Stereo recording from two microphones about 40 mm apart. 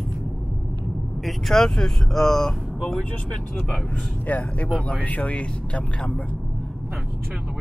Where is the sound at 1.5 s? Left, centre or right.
Centre.